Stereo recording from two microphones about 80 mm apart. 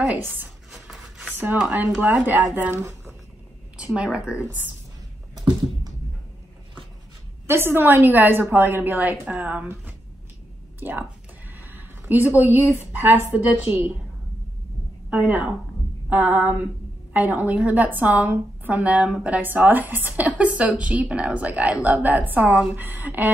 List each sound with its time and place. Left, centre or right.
0.0 s a woman's voice: right
0.7 s rub: centre
1.7 s a woman's voice: right
2.8 s a sound: right
3.7 s a woman's voice: centre
7.4 s a woman's voice: right
10.8 s speech: right
13.5 s a woman's voice: centre
15.0 s a woman's voice: centre